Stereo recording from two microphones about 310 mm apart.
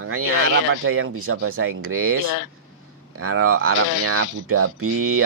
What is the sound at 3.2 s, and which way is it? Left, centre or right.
Speech, right.